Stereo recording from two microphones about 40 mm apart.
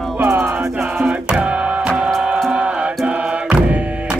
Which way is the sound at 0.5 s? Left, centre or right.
Right.